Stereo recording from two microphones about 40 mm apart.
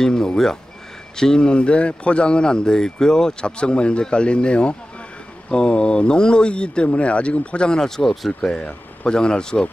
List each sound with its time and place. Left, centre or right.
0.0 s speech: centre